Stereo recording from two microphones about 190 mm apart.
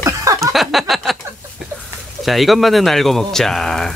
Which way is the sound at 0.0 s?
15° right (ahead or behind).